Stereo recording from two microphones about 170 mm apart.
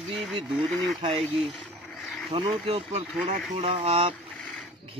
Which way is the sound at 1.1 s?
Centre (ahead or behind).